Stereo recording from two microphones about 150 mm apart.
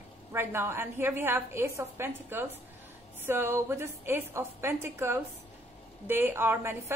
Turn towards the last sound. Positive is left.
turn(degrees=-15)  # may be behind; listen again after turning